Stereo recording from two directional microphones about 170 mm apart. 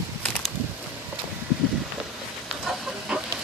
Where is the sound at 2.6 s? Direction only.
5° right (ahead or behind).